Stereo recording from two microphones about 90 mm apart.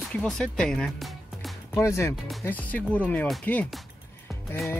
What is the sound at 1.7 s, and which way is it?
Speech, 30° left (ahead or behind).